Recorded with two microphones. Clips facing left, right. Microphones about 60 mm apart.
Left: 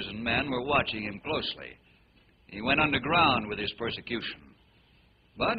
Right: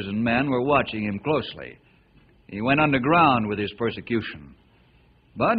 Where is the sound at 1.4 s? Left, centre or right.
Centre.